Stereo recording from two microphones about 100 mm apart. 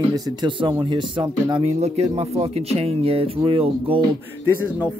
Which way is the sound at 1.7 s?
90° right.